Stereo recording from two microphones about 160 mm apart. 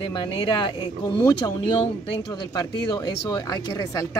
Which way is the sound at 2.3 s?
25° left (ahead or behind).